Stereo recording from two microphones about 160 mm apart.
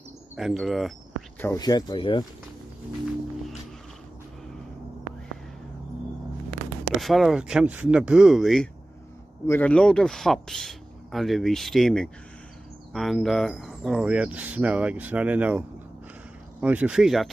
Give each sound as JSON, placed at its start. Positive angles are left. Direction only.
{"t": 0.4, "sound": "speech", "side_deg": 0}
{"t": 1.4, "sound": "speech", "side_deg": 20}
{"t": 7.0, "sound": "speech", "side_deg": 0}
{"t": 16.6, "sound": "speech", "side_deg": -10}